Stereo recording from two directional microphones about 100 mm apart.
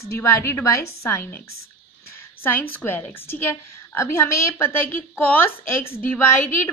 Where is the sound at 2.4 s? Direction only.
20° left (ahead or behind).